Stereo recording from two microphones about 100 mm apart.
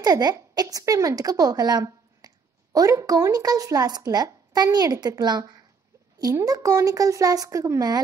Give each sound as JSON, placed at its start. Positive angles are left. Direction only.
{"t": 0.0, "sound": "speech", "side_deg": -40}